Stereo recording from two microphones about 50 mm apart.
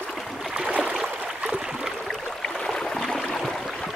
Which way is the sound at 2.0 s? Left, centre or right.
Centre.